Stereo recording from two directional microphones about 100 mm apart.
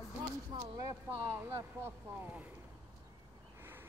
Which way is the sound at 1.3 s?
25° right (ahead or behind).